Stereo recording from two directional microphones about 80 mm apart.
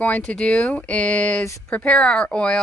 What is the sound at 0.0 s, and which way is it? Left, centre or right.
A woman's voice, centre.